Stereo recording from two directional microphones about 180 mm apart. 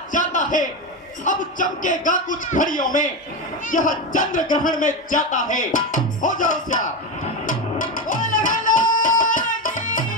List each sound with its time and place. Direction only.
0.1 s speech: 45° left (ahead or behind)
7.4 s music: 45° left (ahead or behind)